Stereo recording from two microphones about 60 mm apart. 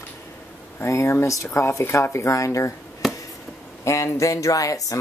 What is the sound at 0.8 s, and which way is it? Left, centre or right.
Speech, left.